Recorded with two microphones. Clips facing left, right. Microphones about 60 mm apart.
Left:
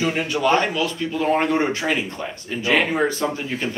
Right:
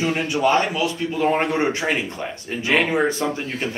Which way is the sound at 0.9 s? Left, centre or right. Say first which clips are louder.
Even; right.